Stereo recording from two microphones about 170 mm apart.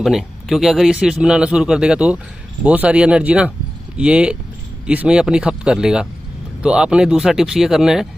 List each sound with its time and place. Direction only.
0.0 s a man's voice: centre (ahead or behind)